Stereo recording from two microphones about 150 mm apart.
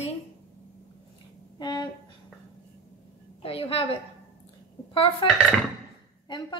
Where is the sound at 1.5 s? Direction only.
30° left (ahead or behind).